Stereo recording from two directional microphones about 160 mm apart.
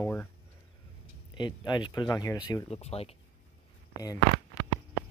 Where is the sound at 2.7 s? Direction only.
40° left (ahead or behind).